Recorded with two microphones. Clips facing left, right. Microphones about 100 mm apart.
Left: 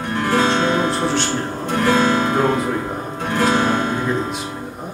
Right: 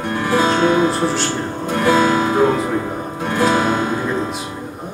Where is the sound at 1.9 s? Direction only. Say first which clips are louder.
Right 4 dB; 5° right (ahead or behind).